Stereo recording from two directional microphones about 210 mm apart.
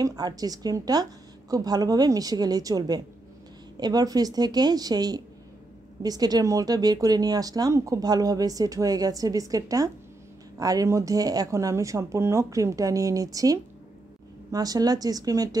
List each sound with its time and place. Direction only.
0.0 s a woman's voice: 20° right (ahead or behind)